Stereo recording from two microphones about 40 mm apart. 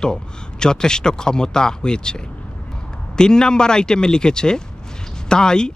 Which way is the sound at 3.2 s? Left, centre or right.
Centre.